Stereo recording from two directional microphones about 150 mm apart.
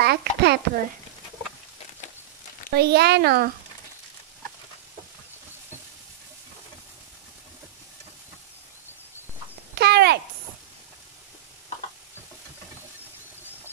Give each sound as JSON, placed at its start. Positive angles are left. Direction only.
{"t": 0.0, "sound": "a woman's voice", "side_deg": -90}
{"t": 2.7, "sound": "speech", "side_deg": -90}
{"t": 9.8, "sound": "speech", "side_deg": -90}